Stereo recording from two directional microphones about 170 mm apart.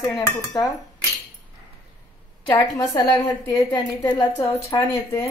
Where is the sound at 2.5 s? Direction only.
25° left (ahead or behind).